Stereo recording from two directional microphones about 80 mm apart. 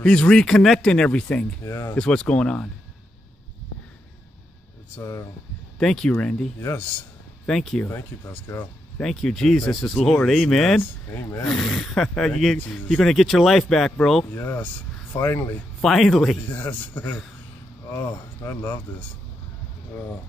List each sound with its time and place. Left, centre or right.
0.0 s speech: centre
1.6 s speech: left
2.0 s speech: centre
4.9 s speech: left
5.8 s speech: centre
7.4 s speech: centre
7.8 s speech: left
8.9 s speech: centre
12.5 s speech: centre
13.0 s speech: centre
14.3 s speech: left
15.8 s speech: centre
16.4 s speech: left